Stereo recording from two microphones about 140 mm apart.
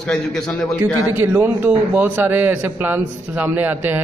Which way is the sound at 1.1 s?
15° right (ahead or behind).